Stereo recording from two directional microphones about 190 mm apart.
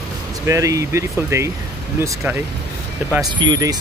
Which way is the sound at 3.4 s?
20° right (ahead or behind).